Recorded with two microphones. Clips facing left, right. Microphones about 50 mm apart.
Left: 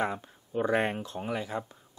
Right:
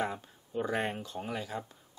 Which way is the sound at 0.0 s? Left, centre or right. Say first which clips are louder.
Left 3 dB; left.